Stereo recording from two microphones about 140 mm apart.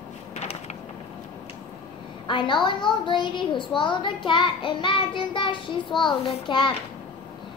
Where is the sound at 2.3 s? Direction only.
35° left (ahead or behind).